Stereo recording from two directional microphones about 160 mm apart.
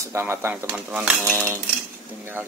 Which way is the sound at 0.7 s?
5° right (ahead or behind).